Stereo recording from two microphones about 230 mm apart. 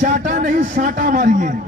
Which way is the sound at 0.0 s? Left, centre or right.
Right.